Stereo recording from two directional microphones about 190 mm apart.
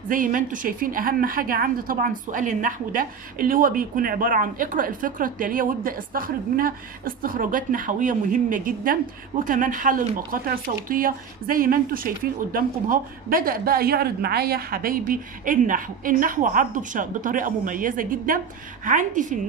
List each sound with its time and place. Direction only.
0.1 s a woman's voice: 45° right (ahead or behind)